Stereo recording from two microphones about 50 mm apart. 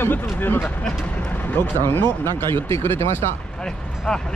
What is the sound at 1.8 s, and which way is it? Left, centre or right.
Speech, left.